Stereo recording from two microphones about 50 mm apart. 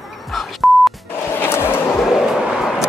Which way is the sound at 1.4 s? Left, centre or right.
Left.